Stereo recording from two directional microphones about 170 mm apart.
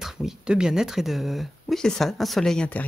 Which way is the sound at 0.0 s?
5° right (ahead or behind).